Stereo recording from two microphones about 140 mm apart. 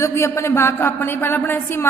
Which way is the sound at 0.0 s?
20° left (ahead or behind).